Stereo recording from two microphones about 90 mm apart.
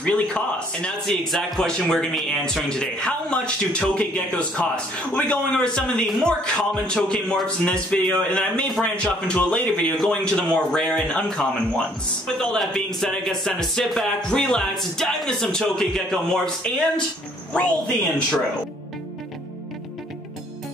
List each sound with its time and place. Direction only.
0.0 s a man's voice: 10° left (ahead or behind)